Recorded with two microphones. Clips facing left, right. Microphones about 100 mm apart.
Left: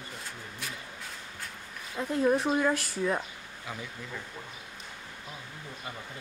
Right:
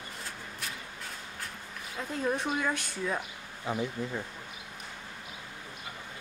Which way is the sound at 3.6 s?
30° right (ahead or behind).